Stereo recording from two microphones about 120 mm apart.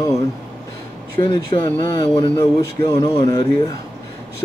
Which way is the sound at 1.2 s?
50° left (ahead or behind).